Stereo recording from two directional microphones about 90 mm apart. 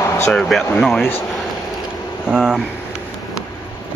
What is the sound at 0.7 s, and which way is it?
Speech, 5° left (ahead or behind).